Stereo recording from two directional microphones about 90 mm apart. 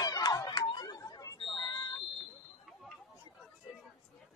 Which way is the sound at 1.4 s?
55° left (ahead or behind).